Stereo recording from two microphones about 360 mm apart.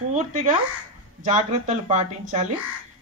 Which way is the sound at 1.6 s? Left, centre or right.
Centre.